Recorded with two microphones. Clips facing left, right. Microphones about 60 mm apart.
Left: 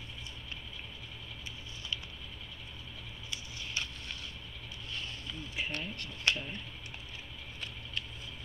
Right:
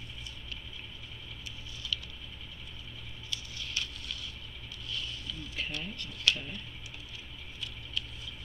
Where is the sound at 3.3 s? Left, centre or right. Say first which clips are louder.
Right 1 dB; left.